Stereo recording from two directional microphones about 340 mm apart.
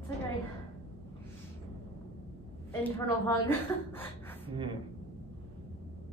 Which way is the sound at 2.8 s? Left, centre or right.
Centre.